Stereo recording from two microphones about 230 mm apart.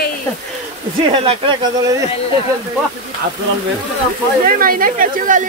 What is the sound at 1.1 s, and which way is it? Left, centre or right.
Speech, right.